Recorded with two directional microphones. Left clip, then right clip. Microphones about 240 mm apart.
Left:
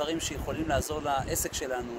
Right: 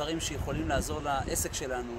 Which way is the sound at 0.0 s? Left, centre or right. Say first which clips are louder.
Left 2 dB; centre.